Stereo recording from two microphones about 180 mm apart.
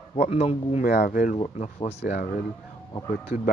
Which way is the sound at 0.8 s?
50° left (ahead or behind).